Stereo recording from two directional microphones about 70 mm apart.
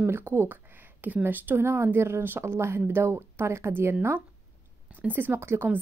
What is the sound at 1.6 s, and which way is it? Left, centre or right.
A woman's voice, right.